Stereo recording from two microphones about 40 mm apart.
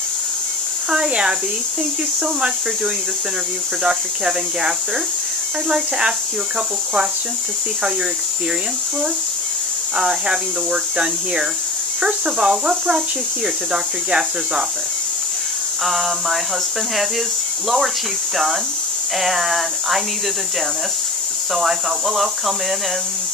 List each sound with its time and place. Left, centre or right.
0.8 s speech: centre
9.9 s speech: centre
15.8 s speech: centre
17.6 s speech: centre
21.5 s speech: centre